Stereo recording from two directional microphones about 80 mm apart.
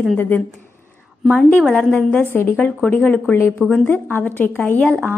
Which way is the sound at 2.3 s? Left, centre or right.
Left.